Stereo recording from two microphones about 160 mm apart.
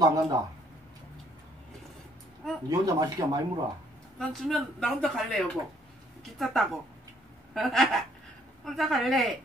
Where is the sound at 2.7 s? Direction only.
20° right (ahead or behind).